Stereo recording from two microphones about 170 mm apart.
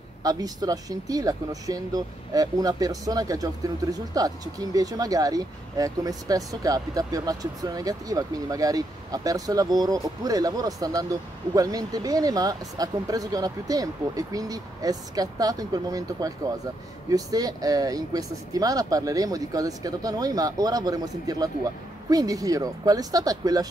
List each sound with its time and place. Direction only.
0.2 s speech: 20° right (ahead or behind)